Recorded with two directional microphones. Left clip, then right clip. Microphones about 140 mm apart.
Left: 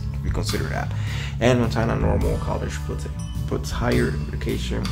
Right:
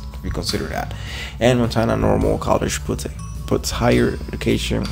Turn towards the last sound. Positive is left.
turn(degrees=-40)  # may be behind; listen again after turning